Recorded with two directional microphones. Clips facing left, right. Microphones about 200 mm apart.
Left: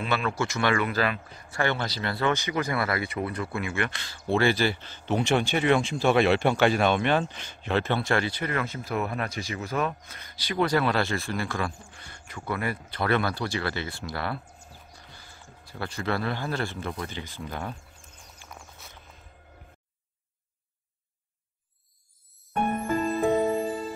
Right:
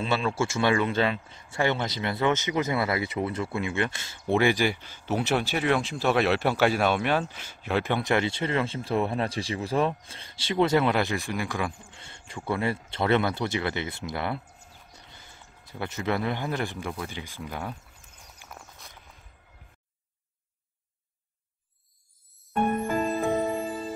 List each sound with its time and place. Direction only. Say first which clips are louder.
0.0 s speech: right 1 dB; 25° right (ahead or behind); by 17.7 s 5° right (ahead or behind)
18.8 s walk: left 1 dB; centre (ahead or behind)